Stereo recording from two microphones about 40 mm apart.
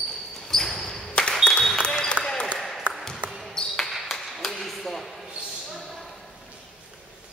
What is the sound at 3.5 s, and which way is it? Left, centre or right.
Basketball bounce, centre.